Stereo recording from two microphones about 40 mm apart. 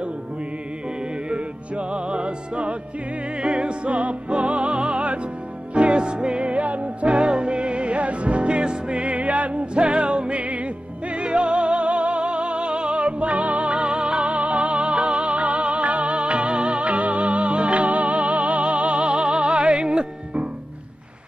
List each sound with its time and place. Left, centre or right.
1.3 s music: right